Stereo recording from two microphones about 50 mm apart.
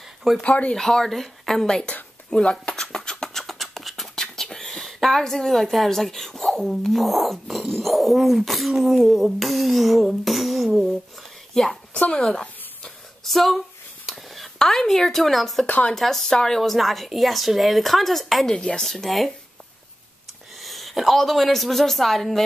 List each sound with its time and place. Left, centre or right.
0.4 s speech: left
0.7 s speech: centre
2.7 s a sound: centre
3.4 s beatboxing: centre
4.1 s a woman's voice: centre
12.1 s a sound: centre
14.6 s speech: centre
15.6 s speech: left
15.9 s speech: centre
20.6 s speech: centre